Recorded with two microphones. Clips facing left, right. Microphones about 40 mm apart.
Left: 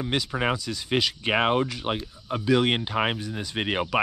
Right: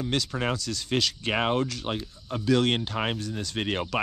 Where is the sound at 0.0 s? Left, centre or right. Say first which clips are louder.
Left 2 dB; centre.